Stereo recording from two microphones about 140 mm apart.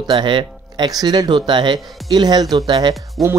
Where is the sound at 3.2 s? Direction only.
Centre (ahead or behind).